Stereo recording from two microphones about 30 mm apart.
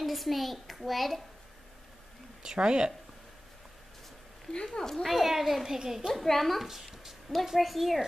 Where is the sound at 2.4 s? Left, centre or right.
Right.